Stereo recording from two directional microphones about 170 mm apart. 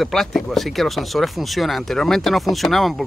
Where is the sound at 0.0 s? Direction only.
Centre (ahead or behind).